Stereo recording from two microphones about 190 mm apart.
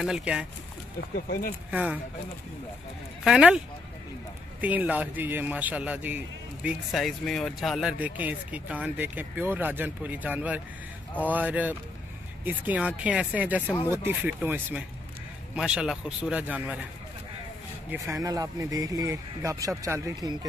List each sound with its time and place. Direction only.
0.0 s a man's voice: 5° right (ahead or behind)
1.1 s speech: 50° left (ahead or behind)
1.7 s a man's voice: 5° right (ahead or behind)
3.3 s a man's voice: 5° right (ahead or behind)
17.8 s a man's voice: 15° right (ahead or behind)